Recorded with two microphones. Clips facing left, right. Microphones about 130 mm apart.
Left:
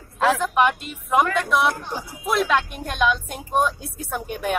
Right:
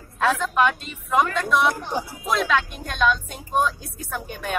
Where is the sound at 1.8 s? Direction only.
15° right (ahead or behind).